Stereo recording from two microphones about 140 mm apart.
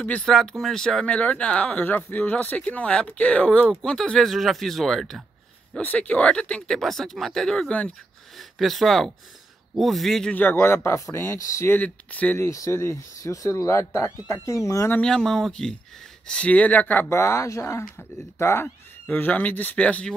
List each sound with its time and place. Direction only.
0.0 s speech: 5° left (ahead or behind)
12.4 s speech: 20° left (ahead or behind)
15.0 s speech: 5° left (ahead or behind)